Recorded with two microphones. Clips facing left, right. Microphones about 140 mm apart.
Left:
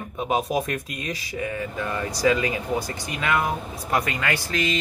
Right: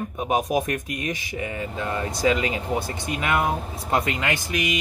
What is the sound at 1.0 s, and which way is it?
Speech, 20° right (ahead or behind).